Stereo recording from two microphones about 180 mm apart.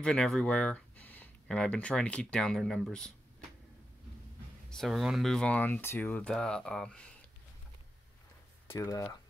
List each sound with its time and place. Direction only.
0.0 s speech: 5° left (ahead or behind)
4.6 s speech: centre (ahead or behind)
8.6 s speech: 20° left (ahead or behind)